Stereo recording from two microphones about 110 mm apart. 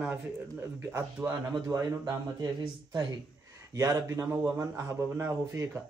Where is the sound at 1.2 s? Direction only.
15° right (ahead or behind).